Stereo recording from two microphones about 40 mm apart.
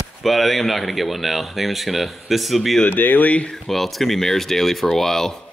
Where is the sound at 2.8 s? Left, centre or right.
Left.